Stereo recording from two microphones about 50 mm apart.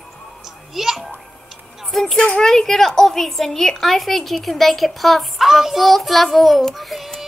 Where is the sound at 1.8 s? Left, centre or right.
Centre.